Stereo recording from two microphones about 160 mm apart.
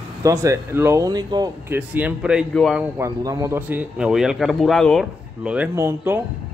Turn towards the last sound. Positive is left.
turn(degrees=-15)  # may be behind; listen again after turning